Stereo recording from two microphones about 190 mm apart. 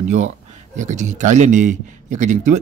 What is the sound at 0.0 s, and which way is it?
A man's voice, 40° right (ahead or behind).